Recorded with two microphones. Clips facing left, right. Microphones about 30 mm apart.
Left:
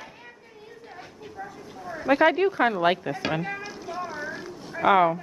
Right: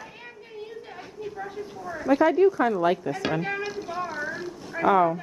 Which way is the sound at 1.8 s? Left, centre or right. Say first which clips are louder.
Even; left.